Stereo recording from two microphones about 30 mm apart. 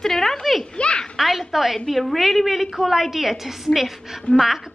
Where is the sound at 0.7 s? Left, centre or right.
Left.